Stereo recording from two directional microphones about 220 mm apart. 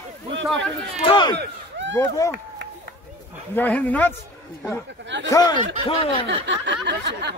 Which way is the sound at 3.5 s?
10° left (ahead or behind).